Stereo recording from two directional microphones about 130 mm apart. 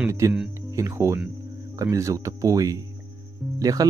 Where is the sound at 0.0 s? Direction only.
25° right (ahead or behind).